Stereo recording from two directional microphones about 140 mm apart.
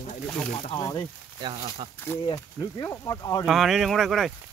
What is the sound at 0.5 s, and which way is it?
Speech, 45° left (ahead or behind).